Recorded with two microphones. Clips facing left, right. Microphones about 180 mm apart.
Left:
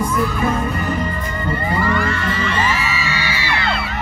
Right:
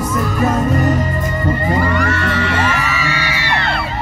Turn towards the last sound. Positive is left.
turn(degrees=-60)  # may be behind; listen again after turning